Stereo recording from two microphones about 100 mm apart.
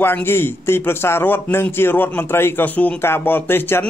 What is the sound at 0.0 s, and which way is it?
Speech, 20° left (ahead or behind).